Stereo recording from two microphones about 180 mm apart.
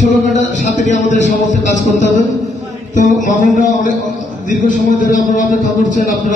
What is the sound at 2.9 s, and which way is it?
A man's voice, 45° left (ahead or behind).